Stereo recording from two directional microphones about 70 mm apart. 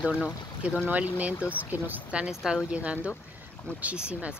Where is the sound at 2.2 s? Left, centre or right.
Centre.